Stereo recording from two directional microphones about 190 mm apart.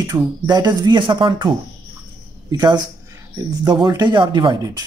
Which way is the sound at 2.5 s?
20° right (ahead or behind).